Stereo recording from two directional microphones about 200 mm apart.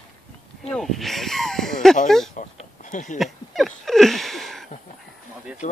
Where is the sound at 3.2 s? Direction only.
Centre (ahead or behind).